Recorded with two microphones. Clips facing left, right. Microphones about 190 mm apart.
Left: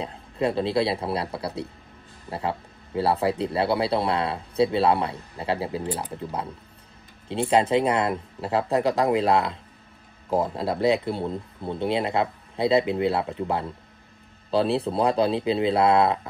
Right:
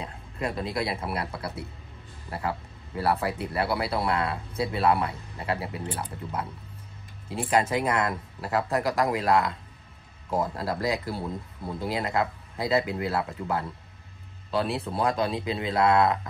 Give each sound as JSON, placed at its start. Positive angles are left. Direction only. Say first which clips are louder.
{"t": 0.0, "sound": "speech", "louder": "left 7 dB", "side_deg": 30}
{"t": 6.1, "sound": "speech", "louder": "left 3 dB", "side_deg": 30}